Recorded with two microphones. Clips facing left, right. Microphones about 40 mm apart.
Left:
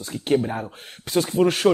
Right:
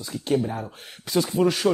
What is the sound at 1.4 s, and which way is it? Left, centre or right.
Speech, left.